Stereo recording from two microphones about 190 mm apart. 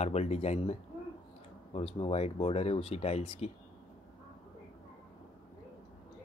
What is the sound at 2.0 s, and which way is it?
Speech, 30° left (ahead or behind).